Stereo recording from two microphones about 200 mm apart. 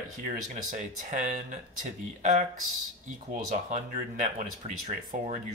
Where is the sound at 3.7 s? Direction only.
35° right (ahead or behind).